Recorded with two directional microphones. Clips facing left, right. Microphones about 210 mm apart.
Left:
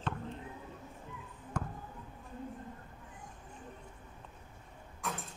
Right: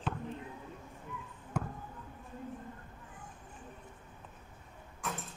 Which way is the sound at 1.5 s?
5° right (ahead or behind).